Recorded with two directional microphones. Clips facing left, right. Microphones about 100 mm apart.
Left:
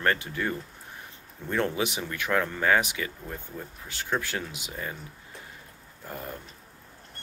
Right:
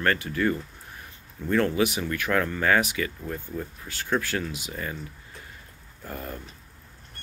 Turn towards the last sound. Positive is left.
turn(degrees=15)  # may be behind; listen again after turning